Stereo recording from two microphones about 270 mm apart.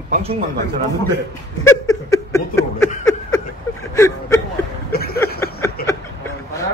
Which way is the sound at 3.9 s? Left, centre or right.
Centre.